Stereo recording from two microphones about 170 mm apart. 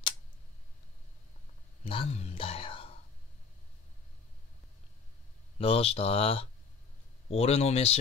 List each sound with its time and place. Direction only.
1.9 s speech: 35° left (ahead or behind)
5.6 s speech: 35° left (ahead or behind)